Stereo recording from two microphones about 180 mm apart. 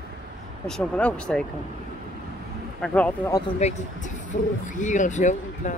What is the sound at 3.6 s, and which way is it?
Speech, 35° left (ahead or behind).